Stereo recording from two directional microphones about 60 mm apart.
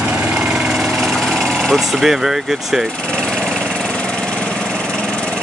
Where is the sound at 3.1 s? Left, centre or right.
Centre.